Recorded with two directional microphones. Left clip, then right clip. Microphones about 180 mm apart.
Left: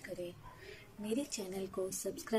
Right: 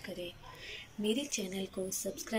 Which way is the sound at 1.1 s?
5° left (ahead or behind).